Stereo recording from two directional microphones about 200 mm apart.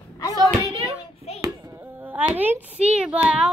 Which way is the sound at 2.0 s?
10° right (ahead or behind).